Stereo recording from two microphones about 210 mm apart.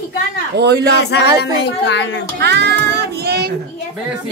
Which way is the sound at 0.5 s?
50° right (ahead or behind).